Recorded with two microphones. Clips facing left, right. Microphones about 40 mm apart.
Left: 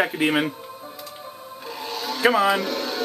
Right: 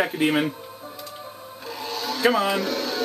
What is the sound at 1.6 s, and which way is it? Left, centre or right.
Music, centre.